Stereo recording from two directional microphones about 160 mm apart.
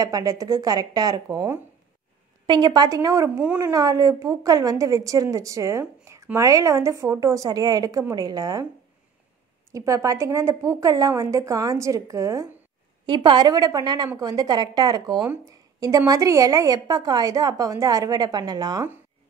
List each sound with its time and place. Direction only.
0.0 s a woman's voice: 20° right (ahead or behind)
9.7 s a woman's voice: 20° right (ahead or behind)